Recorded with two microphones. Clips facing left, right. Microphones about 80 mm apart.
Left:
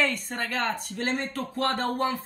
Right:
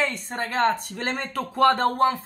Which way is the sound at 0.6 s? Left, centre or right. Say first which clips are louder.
Right 4 dB; right.